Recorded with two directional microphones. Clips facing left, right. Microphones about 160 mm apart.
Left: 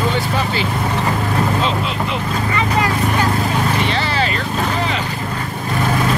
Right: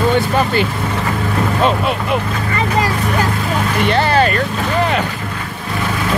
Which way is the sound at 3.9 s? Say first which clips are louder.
Right 6 dB; 55° right (ahead or behind).